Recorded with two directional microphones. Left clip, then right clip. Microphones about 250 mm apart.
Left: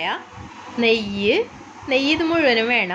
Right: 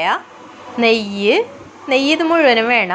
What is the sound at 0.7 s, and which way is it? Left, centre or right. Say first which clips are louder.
A woman's voice: right 4 dB; centre.